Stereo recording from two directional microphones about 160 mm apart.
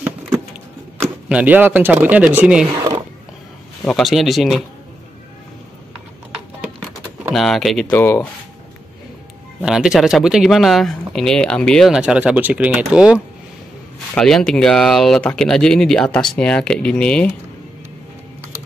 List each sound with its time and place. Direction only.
1.3 s speech: 10° right (ahead or behind)
2.7 s speech: 25° right (ahead or behind)
3.8 s speech: centre (ahead or behind)
7.3 s speech: centre (ahead or behind)
7.9 s speech: 15° left (ahead or behind)
9.6 s speech: 5° right (ahead or behind)